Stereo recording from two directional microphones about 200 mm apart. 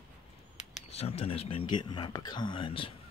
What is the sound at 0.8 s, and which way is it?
Speech, 30° left (ahead or behind).